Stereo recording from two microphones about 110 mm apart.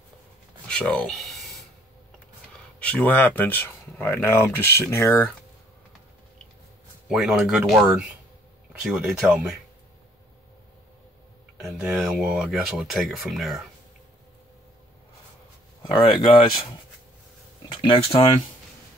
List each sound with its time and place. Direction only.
0.7 s a sound: 5° left (ahead or behind)
2.9 s speech: 15° left (ahead or behind)
7.1 s speech: 5° right (ahead or behind)
11.6 s speech: 5° right (ahead or behind)
15.9 s speech: 45° left (ahead or behind)
17.9 s speech: 60° left (ahead or behind)